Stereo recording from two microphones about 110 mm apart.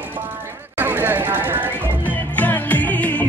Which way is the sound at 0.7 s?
20° right (ahead or behind).